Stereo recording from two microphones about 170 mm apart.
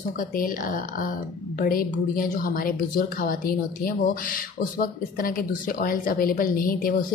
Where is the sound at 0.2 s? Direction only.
55° left (ahead or behind).